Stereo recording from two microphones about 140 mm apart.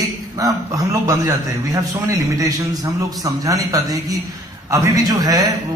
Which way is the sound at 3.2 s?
25° right (ahead or behind).